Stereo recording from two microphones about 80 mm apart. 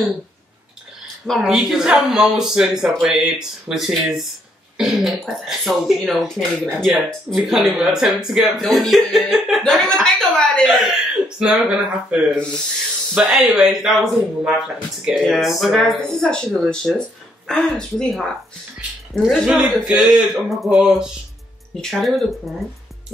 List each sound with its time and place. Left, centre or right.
1.4 s speech: centre
19.2 s speech: centre